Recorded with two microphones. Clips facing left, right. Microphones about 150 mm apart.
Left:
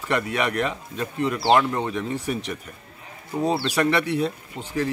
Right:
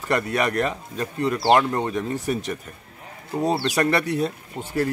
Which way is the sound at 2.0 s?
45° right (ahead or behind).